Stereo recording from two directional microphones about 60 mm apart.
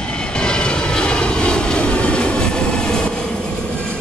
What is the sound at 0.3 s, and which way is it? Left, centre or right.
Vehicle, centre.